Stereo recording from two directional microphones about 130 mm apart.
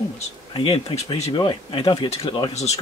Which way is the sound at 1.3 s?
40° left (ahead or behind).